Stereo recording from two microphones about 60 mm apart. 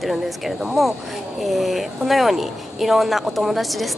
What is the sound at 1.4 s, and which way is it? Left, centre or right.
Speech, centre.